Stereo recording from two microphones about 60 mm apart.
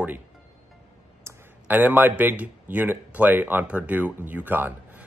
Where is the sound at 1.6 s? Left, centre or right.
Right.